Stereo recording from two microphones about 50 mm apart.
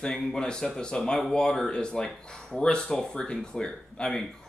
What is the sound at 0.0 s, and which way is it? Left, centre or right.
Speech, centre.